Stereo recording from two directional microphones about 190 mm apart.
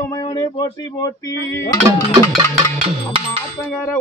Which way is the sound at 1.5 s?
15° left (ahead or behind).